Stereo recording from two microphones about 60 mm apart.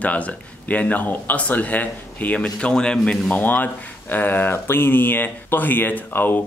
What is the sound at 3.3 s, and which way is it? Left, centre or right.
Speech, left.